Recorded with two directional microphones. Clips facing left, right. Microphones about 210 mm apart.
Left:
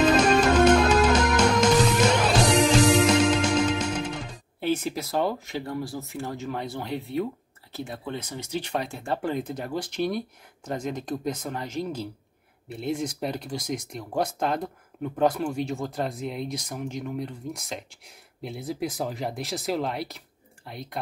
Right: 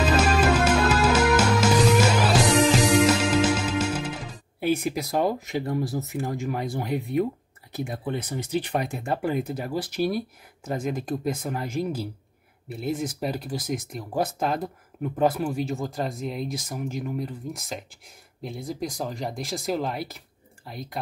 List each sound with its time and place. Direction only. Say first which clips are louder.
0.0 s music: left 2 dB; 5° right (ahead or behind)
7.7 s speech: right 4 dB; 15° right (ahead or behind); by 21.0 s centre (ahead or behind)